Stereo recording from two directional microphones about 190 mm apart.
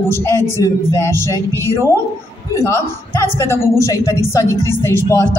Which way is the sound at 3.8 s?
15° left (ahead or behind).